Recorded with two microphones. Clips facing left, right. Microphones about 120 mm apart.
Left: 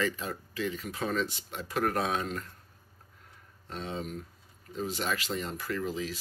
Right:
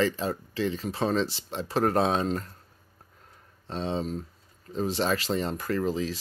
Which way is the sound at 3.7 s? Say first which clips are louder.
Right 7 dB; 30° right (ahead or behind).